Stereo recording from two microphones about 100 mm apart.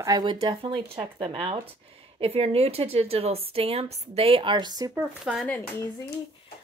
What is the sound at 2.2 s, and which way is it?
A woman's voice, 80° right.